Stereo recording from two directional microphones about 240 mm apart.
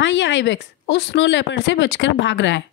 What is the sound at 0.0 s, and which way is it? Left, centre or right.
Speech, left.